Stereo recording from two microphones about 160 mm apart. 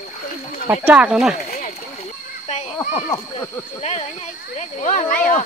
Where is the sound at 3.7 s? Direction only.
45° left (ahead or behind).